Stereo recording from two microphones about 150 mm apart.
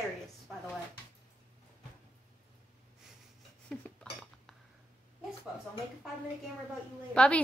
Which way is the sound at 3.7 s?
5° left (ahead or behind).